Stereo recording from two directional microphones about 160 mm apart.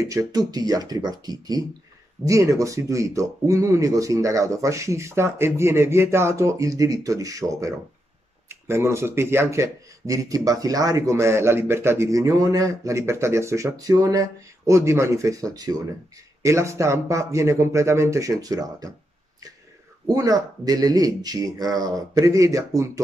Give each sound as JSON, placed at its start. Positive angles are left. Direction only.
{"t": 0.0, "sound": "speech", "side_deg": -20}
{"t": 20.1, "sound": "speech", "side_deg": -25}